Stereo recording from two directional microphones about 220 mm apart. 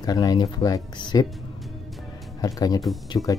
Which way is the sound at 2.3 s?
15° left (ahead or behind).